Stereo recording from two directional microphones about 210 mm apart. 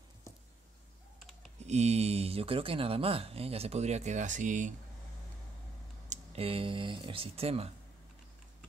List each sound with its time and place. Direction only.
1.6 s speech: 30° right (ahead or behind)
6.0 s speech: 30° right (ahead or behind)